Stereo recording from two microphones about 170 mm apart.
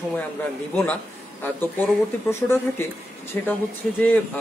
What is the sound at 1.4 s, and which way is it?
Speech, 10° left (ahead or behind).